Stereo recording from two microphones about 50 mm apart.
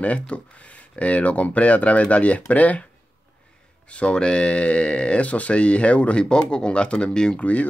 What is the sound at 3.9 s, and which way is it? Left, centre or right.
Speech, left.